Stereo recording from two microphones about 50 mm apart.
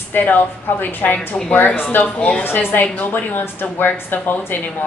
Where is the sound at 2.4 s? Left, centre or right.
Left.